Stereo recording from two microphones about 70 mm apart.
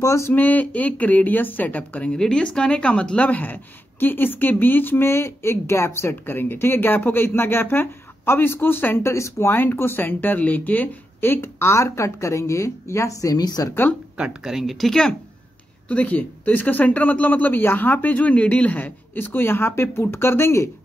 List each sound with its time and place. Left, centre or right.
0.0 s speech: left
0.3 s speech: left
2.1 s speech: centre; by 13.7 s left
14.1 s speech: centre
15.9 s speech: left